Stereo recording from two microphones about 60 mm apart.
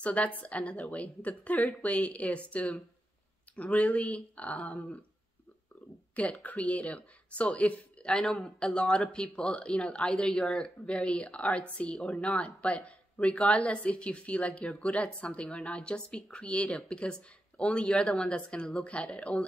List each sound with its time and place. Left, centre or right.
0.0 s speech: left
6.1 s speech: left